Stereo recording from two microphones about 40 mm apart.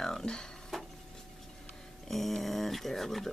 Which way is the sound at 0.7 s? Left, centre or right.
Centre.